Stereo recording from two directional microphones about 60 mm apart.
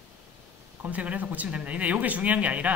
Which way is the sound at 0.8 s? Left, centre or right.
Right.